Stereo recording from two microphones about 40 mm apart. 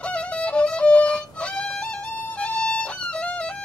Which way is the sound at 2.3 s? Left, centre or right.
Left.